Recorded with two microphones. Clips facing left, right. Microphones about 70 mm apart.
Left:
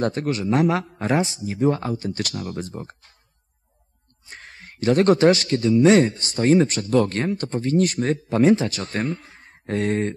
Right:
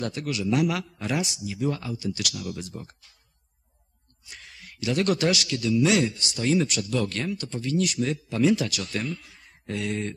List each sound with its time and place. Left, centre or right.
0.0 s a man's voice: left
4.3 s a man's voice: left